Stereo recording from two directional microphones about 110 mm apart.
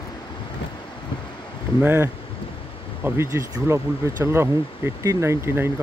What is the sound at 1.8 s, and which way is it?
Speech, 20° right (ahead or behind).